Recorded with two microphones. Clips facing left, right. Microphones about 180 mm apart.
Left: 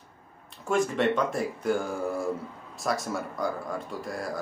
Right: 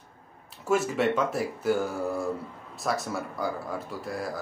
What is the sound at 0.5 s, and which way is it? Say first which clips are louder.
Speech: even; 5° right (ahead or behind).